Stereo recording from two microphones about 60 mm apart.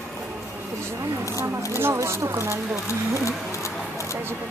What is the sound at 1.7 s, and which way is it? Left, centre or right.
Speech, right.